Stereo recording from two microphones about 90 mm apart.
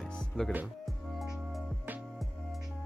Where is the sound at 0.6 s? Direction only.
Centre (ahead or behind).